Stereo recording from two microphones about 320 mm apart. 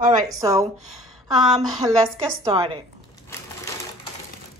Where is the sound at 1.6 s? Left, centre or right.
Centre.